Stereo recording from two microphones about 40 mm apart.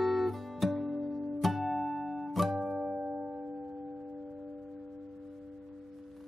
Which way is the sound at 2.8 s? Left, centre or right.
Right.